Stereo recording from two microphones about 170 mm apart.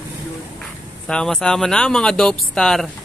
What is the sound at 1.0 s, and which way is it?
Speech, 5° left (ahead or behind).